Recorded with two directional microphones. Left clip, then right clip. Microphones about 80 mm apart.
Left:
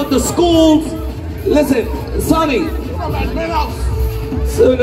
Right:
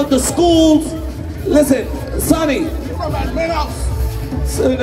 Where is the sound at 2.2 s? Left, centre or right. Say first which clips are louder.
Left 1 dB; right.